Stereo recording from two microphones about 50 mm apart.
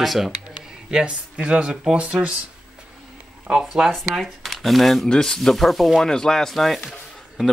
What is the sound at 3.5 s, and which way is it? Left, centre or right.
Speech, centre.